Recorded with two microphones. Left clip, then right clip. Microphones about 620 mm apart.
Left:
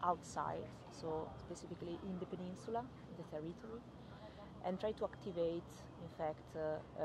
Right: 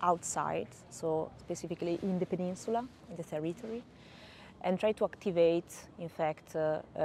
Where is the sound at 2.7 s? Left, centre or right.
Right.